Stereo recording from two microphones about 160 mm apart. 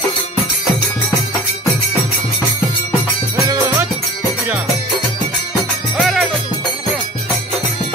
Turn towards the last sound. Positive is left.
turn(degrees=0)  # may be behind; listen again after turning